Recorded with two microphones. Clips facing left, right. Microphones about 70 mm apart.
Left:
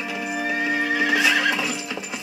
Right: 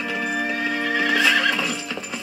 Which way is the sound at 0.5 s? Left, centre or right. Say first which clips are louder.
Left 1 dB; left.